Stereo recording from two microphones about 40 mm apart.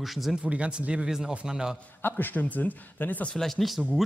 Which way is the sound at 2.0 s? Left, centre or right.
Left.